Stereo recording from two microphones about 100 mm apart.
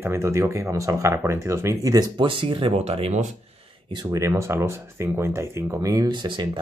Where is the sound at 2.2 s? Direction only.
55° right (ahead or behind).